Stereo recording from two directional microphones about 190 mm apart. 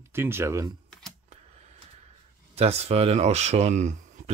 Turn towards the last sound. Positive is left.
turn(degrees=-40)  # may be behind; listen again after turning